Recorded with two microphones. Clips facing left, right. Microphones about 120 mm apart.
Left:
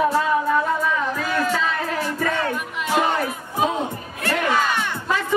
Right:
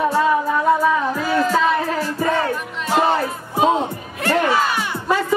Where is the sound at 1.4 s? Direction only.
35° right (ahead or behind).